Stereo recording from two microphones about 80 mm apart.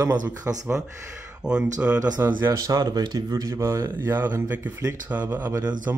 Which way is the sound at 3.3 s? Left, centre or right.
Right.